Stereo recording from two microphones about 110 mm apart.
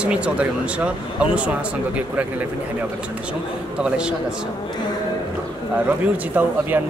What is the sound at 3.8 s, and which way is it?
Speech, 10° right (ahead or behind).